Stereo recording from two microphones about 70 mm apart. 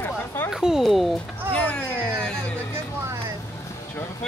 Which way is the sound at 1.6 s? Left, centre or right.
Centre.